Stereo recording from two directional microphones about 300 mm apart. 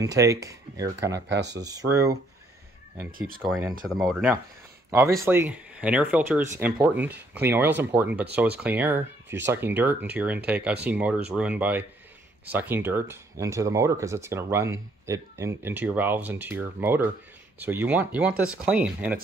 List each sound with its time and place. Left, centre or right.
0.0 s speech: centre
1.3 s speech: right
1.6 s speech: centre
3.1 s speech: right
3.8 s speech: centre